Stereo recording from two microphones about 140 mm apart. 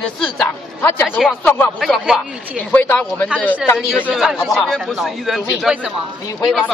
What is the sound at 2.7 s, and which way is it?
Speech, 15° left (ahead or behind).